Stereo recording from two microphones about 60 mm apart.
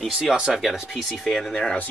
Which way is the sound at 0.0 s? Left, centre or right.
Centre.